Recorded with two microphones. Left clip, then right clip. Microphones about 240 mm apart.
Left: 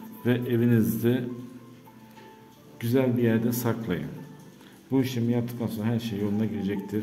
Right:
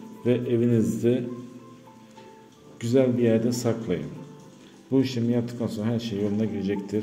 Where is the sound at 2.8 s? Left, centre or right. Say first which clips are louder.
Right 3 dB; centre.